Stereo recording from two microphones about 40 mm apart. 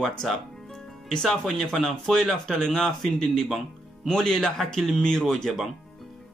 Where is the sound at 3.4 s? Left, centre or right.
Centre.